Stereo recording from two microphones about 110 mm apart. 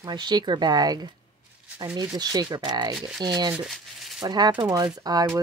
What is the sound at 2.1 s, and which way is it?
Speech, 35° right (ahead or behind).